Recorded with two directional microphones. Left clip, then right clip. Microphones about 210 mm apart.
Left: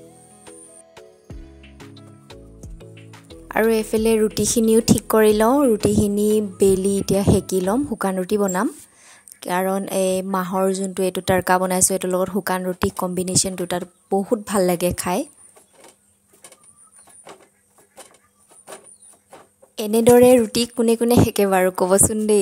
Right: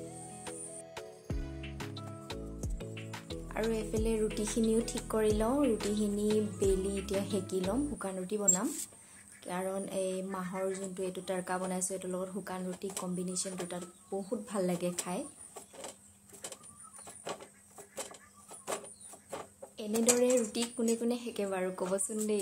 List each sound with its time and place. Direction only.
0.0 s music: centre (ahead or behind)
3.7 s a woman's voice: 50° left (ahead or behind)
19.7 s a woman's voice: 55° left (ahead or behind)